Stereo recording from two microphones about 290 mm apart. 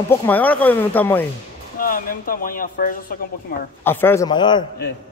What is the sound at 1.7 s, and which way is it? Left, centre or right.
Speech, left.